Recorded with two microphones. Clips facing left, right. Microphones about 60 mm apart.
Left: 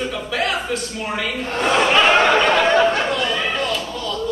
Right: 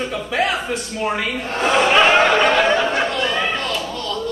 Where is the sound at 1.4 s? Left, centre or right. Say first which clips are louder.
Even; centre.